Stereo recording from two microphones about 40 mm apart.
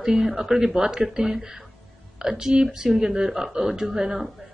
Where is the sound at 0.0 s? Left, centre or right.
Centre.